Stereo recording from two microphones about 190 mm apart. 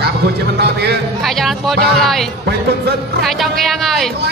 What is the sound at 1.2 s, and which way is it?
Speech, centre (ahead or behind).